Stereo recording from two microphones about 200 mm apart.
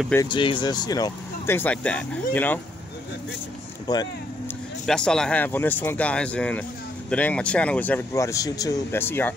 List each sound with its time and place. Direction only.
0.1 s speech: 20° left (ahead or behind)
3.8 s speech: 20° left (ahead or behind)
4.8 s speech: 5° left (ahead or behind)